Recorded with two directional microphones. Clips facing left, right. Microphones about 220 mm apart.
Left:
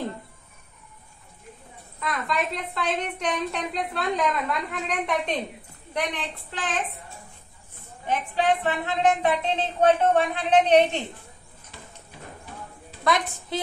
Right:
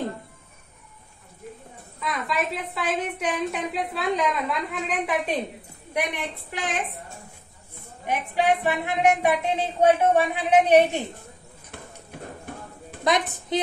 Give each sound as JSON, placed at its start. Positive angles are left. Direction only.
{"t": 2.0, "sound": "a woman's voice", "side_deg": 0}
{"t": 11.7, "sound": "horse", "side_deg": -55}
{"t": 12.1, "sound": "bird", "side_deg": -55}
{"t": 13.0, "sound": "a woman's voice", "side_deg": -20}